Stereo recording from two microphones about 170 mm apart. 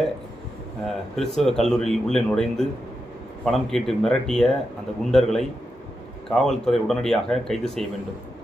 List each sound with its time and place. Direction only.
0.8 s speech: centre (ahead or behind)